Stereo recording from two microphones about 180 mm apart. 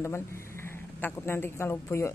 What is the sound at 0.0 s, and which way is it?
Speech, 15° left (ahead or behind).